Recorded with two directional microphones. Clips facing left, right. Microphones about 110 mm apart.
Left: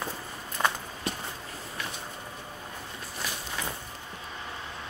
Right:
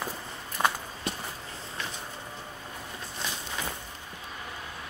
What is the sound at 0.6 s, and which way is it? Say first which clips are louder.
Walk: right 1 dB; 15° right (ahead or behind).